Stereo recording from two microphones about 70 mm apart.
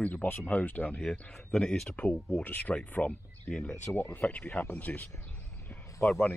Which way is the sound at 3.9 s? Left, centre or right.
Left.